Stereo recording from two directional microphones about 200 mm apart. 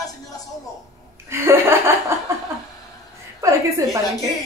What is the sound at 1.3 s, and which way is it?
Chuckle, 10° right (ahead or behind).